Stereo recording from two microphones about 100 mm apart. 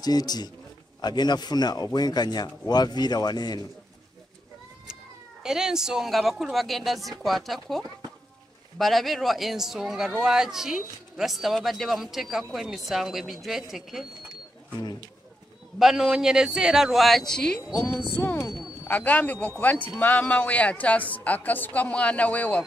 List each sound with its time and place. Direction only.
0.0 s speech: 40° left (ahead or behind)
5.4 s speech: 5° right (ahead or behind)
15.8 s speech: 5° right (ahead or behind)
17.7 s a woman's voice: 20° left (ahead or behind)